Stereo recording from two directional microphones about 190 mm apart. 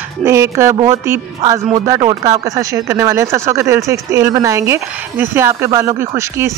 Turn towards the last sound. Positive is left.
turn(degrees=-15)  # may be behind; listen again after turning